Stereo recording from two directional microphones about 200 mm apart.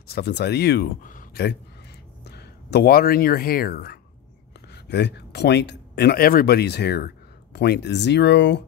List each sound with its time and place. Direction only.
0.1 s a man's voice: 55° left (ahead or behind)